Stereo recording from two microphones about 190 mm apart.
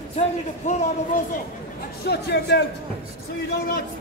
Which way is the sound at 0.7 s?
40° left (ahead or behind).